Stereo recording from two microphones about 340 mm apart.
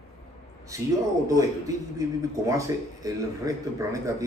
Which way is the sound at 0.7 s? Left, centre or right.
Centre.